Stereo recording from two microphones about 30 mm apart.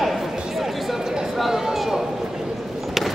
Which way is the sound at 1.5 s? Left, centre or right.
Centre.